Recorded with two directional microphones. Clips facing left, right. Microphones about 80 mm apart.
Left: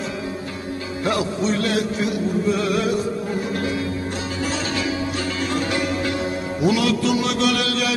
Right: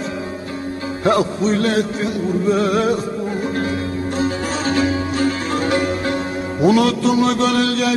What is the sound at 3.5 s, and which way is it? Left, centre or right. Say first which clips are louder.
Music: right 3 dB; right.